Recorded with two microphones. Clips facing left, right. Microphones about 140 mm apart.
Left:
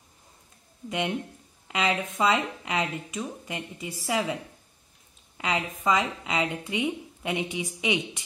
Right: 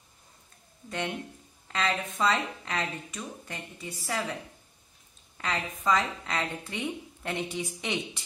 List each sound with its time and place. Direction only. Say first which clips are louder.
0.8 s speech: left 4 dB; 15° left (ahead or behind)
5.9 s speech: left 1 dB; 15° left (ahead or behind)